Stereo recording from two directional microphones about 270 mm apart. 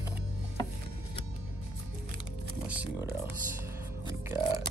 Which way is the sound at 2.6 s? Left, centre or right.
Centre.